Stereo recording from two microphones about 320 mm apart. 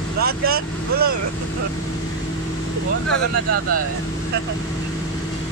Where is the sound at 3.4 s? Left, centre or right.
Right.